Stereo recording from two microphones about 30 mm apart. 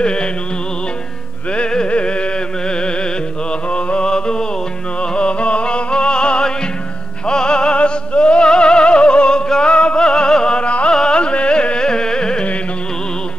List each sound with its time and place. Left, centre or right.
0.0 s music: left
1.5 s music: left
3.7 s a sound: left
5.1 s music: left
10.6 s music: left
10.9 s carnatic music: left